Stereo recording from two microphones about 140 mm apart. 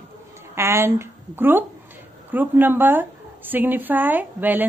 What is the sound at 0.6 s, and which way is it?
A woman's voice, 20° right (ahead or behind).